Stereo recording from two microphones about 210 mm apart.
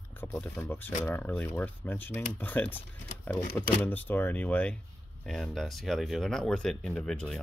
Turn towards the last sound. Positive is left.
turn(degrees=0)  # may be behind; listen again after turning